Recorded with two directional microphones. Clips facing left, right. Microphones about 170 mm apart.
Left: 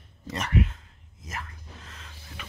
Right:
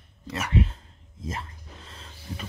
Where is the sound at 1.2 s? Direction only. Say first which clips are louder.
Right 4 dB; 30° right (ahead or behind).